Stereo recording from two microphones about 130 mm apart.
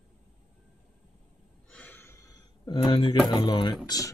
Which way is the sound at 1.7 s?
15° left (ahead or behind).